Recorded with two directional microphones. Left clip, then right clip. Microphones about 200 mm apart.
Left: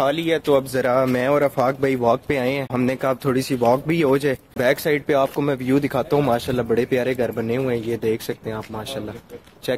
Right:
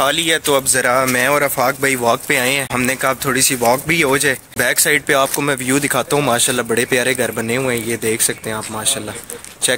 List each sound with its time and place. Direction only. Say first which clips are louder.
0.0 s speech: right 4 dB; centre (ahead or behind); by 8.9 s 25° right (ahead or behind)